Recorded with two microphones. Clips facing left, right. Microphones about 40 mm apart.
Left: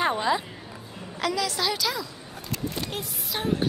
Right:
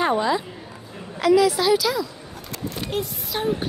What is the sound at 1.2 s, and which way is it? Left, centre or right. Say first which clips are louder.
A woman's voice: right 9 dB; centre.